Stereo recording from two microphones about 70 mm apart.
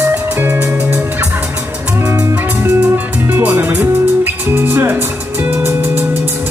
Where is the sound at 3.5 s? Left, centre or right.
Right.